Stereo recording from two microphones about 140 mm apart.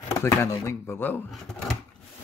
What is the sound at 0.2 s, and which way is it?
Speech, 20° left (ahead or behind).